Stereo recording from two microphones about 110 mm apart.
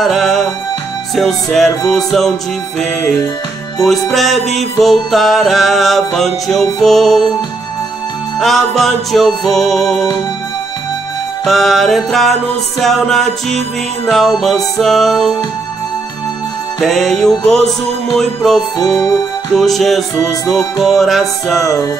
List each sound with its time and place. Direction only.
0.0 s music: centre (ahead or behind)
4.1 s music: centre (ahead or behind)
8.4 s music: centre (ahead or behind)
11.4 s music: centre (ahead or behind)
16.8 s music: centre (ahead or behind)
18.9 s music: 35° left (ahead or behind)
19.5 s music: centre (ahead or behind)
21.6 s music: 35° left (ahead or behind)